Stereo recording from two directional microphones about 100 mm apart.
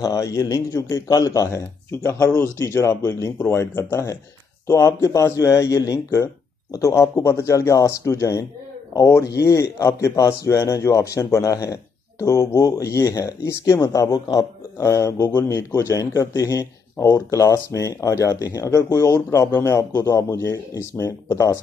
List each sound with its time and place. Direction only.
0.0 s speech: 35° left (ahead or behind)